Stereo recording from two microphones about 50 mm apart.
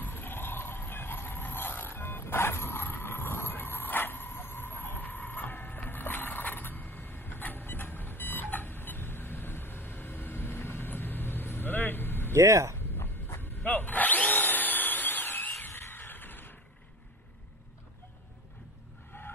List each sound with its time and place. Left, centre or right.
0.0 s vehicle: left
12.4 s speech: right
13.6 s drill: left
15.6 s a sound: left
19.1 s vehicle: left